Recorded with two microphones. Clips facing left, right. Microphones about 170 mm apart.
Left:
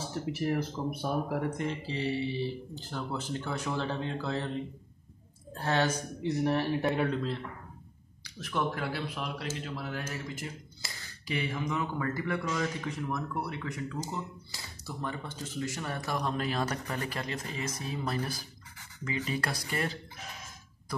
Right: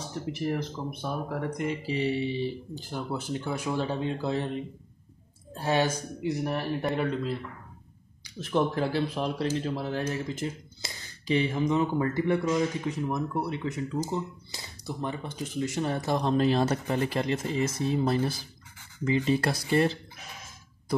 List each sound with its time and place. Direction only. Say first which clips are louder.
0.1 s speech: right 1 dB; 5° left (ahead or behind)
1.6 s speech: right 4 dB; 10° right (ahead or behind)
6.2 s speech: left 1 dB; centre (ahead or behind)
8.4 s speech: right 6 dB; 30° right (ahead or behind)